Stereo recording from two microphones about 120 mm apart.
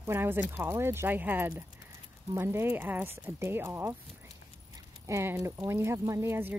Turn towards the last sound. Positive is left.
turn(degrees=-20)  # may be behind; listen again after turning